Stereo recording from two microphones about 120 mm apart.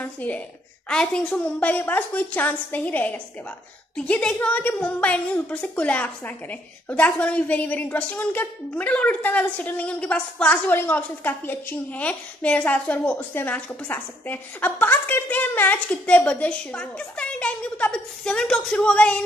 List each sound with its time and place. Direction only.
0.0 s a woman's voice: 15° left (ahead or behind)